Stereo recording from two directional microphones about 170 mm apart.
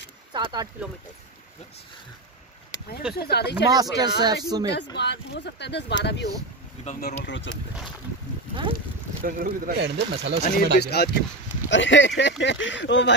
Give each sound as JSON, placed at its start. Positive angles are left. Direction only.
{"t": 0.3, "sound": "speech", "side_deg": -25}
{"t": 3.2, "sound": "speech", "side_deg": 70}
{"t": 3.7, "sound": "speech", "side_deg": -20}
{"t": 4.9, "sound": "speech", "side_deg": 85}
{"t": 7.0, "sound": "speech", "side_deg": 80}
{"t": 9.2, "sound": "speech", "side_deg": -60}
{"t": 10.4, "sound": "speech", "side_deg": 65}
{"t": 11.7, "sound": "speech", "side_deg": 90}